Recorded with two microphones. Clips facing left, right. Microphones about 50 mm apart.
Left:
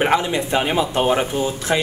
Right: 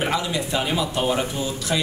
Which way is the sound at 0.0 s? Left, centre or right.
Left.